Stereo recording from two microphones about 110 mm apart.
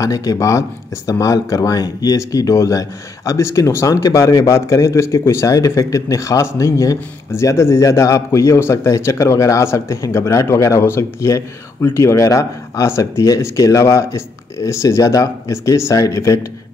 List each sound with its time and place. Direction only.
0.0 s speech: 30° left (ahead or behind)